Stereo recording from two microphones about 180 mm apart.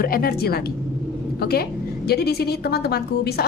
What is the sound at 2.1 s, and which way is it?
A woman's voice, 60° left (ahead or behind).